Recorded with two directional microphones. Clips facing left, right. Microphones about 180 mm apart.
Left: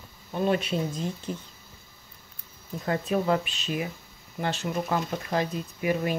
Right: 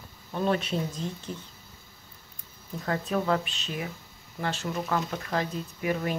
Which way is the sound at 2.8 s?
15° left (ahead or behind).